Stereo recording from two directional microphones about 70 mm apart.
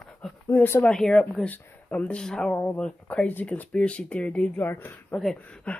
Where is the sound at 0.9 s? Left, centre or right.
Centre.